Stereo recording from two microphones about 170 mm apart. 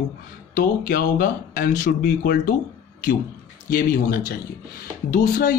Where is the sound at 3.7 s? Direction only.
55° left (ahead or behind).